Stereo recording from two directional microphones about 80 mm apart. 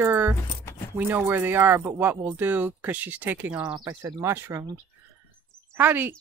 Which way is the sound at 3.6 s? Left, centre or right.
Right.